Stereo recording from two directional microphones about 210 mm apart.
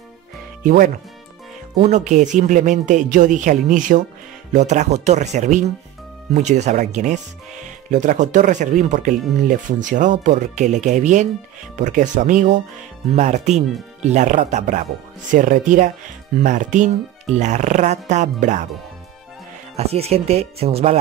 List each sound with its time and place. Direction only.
0.7 s speech: 45° right (ahead or behind)
19.8 s speech: 30° right (ahead or behind)